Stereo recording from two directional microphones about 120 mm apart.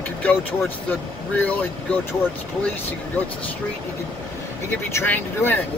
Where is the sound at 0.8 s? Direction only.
15° left (ahead or behind).